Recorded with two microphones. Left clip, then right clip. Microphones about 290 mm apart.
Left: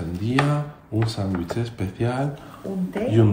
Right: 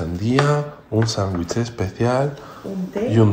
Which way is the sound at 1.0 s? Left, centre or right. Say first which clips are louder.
Right 5 dB; right.